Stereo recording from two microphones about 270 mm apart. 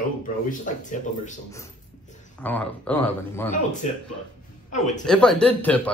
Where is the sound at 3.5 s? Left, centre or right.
Left.